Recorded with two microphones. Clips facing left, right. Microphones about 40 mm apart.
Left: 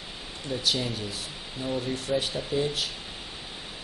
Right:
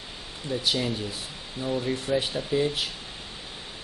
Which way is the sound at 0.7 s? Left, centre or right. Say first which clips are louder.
Right 1 dB; centre.